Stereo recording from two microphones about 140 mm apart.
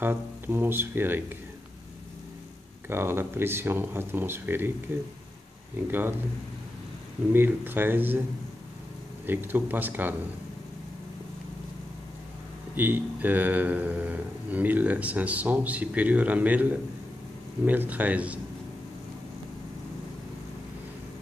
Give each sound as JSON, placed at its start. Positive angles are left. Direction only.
{"t": 0.0, "sound": "speech", "side_deg": -15}
{"t": 2.9, "sound": "speech", "side_deg": -15}
{"t": 5.9, "sound": "speech", "side_deg": -15}
{"t": 7.3, "sound": "speech", "side_deg": -15}
{"t": 9.2, "sound": "speech", "side_deg": -15}
{"t": 12.7, "sound": "speech", "side_deg": -15}
{"t": 17.6, "sound": "speech", "side_deg": -10}